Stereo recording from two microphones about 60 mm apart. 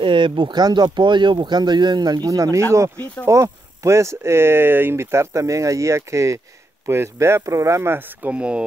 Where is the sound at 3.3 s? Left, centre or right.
Right.